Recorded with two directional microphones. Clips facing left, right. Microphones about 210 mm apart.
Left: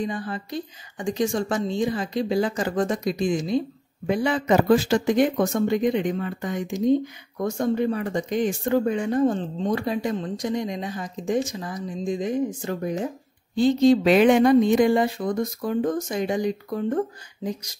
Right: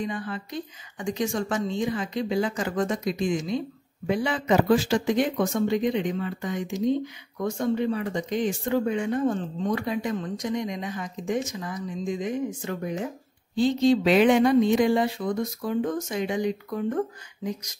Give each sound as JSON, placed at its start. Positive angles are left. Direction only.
{"t": 0.0, "sound": "speech", "side_deg": 35}
{"t": 4.1, "sound": "speech", "side_deg": 45}